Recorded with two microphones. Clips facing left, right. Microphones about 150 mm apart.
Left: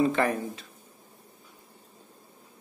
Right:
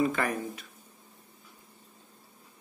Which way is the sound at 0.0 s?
25° left (ahead or behind).